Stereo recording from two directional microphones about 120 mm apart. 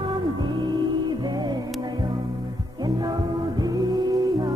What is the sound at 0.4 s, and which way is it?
Music, 40° right (ahead or behind).